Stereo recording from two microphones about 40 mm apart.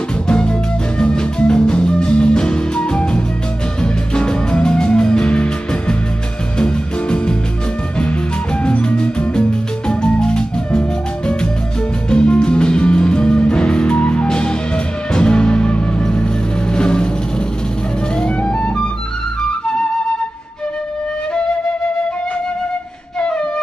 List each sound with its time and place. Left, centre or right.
0.3 s music: left
8.6 s music: left
18.4 s music: left
19.4 s flute: left